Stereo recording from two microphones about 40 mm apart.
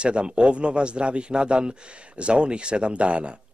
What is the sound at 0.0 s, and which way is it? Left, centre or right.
A man's voice, right.